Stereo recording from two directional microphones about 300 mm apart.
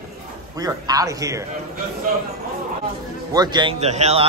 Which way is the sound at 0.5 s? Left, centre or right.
Centre.